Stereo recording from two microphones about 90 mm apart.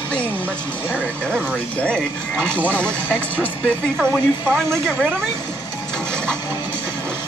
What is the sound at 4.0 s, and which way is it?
Speech, 25° right (ahead or behind).